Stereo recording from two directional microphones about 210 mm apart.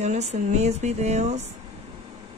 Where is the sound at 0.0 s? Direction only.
35° right (ahead or behind).